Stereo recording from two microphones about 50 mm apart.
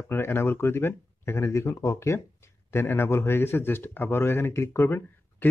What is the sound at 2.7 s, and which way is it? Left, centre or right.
A man's voice, left.